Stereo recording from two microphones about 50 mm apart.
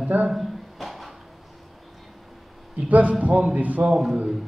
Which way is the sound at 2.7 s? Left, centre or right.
Right.